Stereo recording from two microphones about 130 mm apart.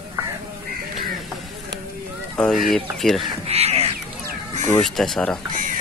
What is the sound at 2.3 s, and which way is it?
Speech, 5° left (ahead or behind).